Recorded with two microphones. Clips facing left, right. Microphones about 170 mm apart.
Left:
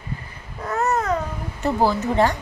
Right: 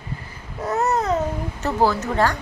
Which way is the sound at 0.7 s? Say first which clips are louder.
Right 1 dB; 20° right (ahead or behind).